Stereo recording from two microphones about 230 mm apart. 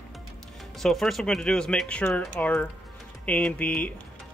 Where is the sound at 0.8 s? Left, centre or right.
Centre.